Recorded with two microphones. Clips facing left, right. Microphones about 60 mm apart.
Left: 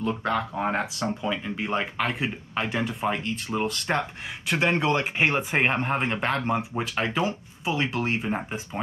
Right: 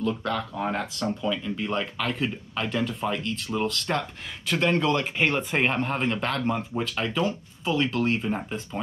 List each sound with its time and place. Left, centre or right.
0.0 s speech: left